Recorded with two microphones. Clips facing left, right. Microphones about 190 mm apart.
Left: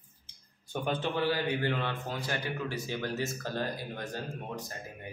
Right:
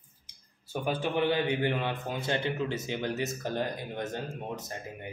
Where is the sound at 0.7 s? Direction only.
10° right (ahead or behind).